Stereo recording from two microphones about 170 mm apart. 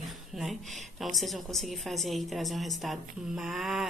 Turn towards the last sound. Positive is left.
turn(degrees=0)  # may be behind; listen again after turning